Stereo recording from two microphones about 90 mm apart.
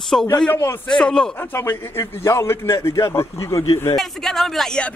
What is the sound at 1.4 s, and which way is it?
A man's voice, 25° left (ahead or behind).